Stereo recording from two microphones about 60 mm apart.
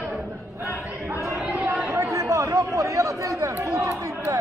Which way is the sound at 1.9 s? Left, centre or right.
Right.